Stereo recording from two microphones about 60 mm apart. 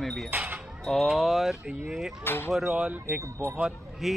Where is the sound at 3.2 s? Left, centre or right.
Right.